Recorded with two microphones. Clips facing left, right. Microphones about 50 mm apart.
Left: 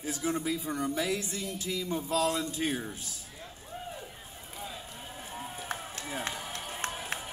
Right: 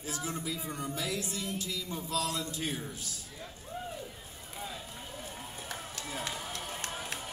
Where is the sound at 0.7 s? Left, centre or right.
Left.